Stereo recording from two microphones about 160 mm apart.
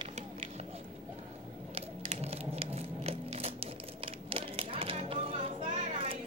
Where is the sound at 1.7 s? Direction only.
40° right (ahead or behind).